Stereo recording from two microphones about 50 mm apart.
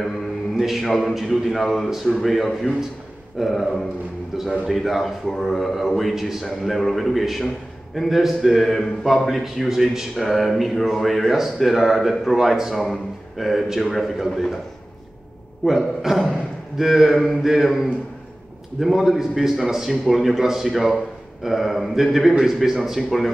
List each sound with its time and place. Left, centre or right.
0.6 s a man's voice: centre
0.8 s a man's voice: centre
15.6 s a man's voice: centre